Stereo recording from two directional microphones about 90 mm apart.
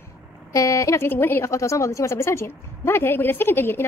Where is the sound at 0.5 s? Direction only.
35° left (ahead or behind).